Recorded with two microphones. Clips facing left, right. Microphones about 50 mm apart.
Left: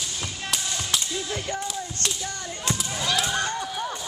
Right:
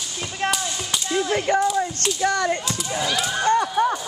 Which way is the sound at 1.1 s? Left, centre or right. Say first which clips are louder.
Right 9 dB; right.